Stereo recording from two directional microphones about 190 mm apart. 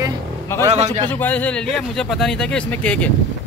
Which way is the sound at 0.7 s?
35° right (ahead or behind).